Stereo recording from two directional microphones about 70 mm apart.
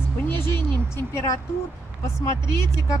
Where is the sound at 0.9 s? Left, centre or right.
Left.